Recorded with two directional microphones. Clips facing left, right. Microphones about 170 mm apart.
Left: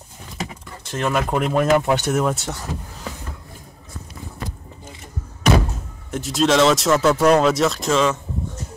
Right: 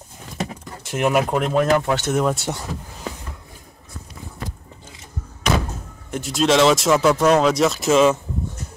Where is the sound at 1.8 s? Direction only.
15° left (ahead or behind).